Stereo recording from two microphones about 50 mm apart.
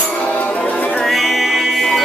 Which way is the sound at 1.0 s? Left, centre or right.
Centre.